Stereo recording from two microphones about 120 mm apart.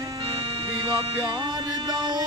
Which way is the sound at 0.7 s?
35° right (ahead or behind).